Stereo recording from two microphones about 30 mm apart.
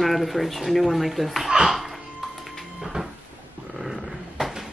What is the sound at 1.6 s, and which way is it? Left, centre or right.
Music, centre.